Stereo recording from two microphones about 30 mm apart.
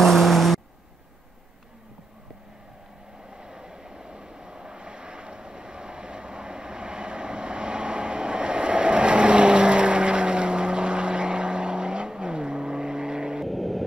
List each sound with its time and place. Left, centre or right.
0.0 s vehicle: centre
3.3 s vehicle: right
13.5 s vehicle: centre